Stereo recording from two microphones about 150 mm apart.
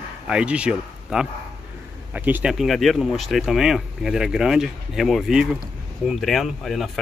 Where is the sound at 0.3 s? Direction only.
5° right (ahead or behind).